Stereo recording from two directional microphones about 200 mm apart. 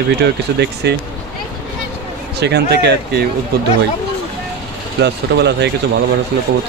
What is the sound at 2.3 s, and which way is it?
Speech, 55° right (ahead or behind).